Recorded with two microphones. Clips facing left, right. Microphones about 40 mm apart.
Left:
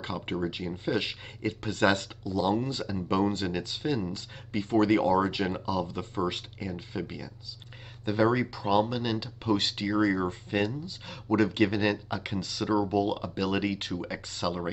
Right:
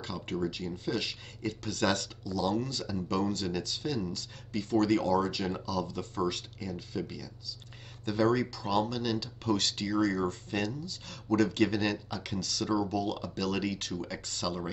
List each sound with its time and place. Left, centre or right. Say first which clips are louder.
0.0 s speech: left 2 dB; left